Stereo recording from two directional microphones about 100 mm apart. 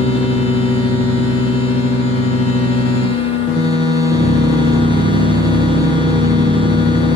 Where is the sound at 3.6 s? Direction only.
45° right (ahead or behind).